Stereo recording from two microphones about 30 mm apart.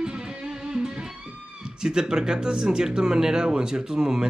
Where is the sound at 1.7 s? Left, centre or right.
Right.